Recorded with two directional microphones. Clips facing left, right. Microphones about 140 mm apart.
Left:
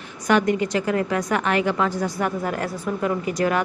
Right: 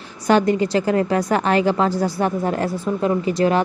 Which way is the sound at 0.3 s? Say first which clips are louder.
Right 3 dB; 30° right (ahead or behind).